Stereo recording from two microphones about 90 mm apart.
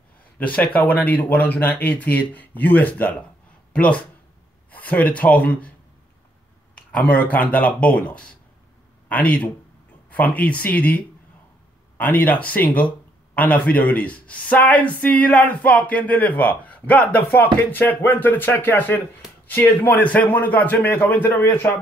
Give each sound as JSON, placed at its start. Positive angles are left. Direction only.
{"t": 0.4, "sound": "speech", "side_deg": 15}
{"t": 6.7, "sound": "speech", "side_deg": 15}